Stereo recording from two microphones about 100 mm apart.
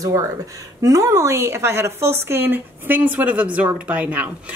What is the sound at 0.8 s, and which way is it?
A woman's voice, 35° right (ahead or behind).